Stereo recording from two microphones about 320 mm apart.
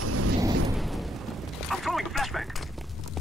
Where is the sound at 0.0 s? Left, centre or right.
Right.